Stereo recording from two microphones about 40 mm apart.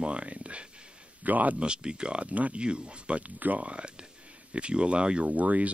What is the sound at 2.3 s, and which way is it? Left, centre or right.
Speech, right.